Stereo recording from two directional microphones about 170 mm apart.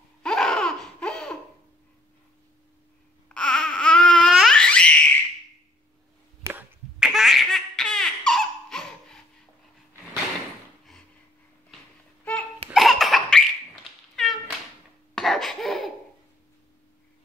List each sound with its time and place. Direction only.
0.2 s laughter: 5° left (ahead or behind)
3.3 s babbling: 5° left (ahead or behind)
6.4 s finger snapping: 15° right (ahead or behind)
7.0 s baby laughter: centre (ahead or behind)
8.3 s a sound: centre (ahead or behind)
12.7 s baby laughter: centre (ahead or behind)
14.1 s cat: centre (ahead or behind)
15.1 s cough: centre (ahead or behind)